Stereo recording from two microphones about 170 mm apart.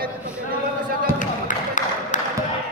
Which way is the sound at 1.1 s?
50° left (ahead or behind).